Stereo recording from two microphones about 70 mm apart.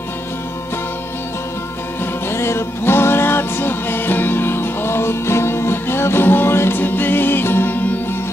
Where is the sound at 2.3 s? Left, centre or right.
Left.